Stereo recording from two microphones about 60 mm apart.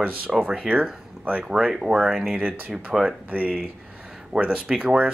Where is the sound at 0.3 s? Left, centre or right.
Centre.